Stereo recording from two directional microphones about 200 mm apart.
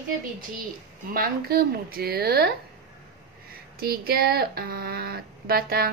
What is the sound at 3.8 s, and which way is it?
A woman's voice, 50° right (ahead or behind).